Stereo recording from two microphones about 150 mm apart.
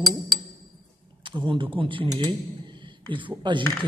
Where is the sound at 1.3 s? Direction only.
35° right (ahead or behind).